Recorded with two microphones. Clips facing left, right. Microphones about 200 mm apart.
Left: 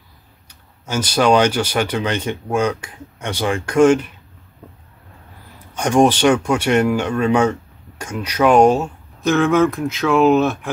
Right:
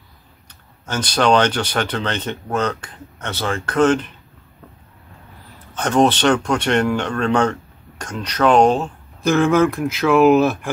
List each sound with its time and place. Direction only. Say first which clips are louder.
0.5 s speech: left 2 dB; 10° left (ahead or behind)
5.8 s speech: left 2 dB; 10° left (ahead or behind)